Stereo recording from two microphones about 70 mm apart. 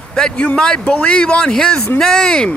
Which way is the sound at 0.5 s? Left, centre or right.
Centre.